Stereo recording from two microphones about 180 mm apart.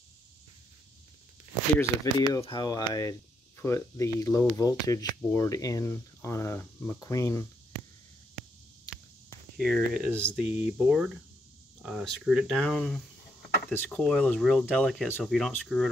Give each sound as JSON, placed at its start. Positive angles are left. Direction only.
{"t": 1.8, "sound": "speech", "side_deg": 20}
{"t": 9.6, "sound": "speech", "side_deg": 0}